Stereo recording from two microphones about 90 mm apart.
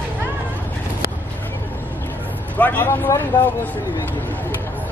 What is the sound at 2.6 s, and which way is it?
Vehicle, 20° left (ahead or behind).